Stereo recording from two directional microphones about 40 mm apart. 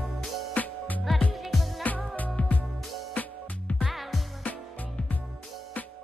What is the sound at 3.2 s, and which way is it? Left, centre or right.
Music, left.